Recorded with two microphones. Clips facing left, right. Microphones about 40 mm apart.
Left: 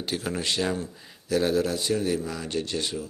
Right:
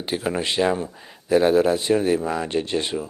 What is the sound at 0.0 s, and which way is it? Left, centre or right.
Speech, right.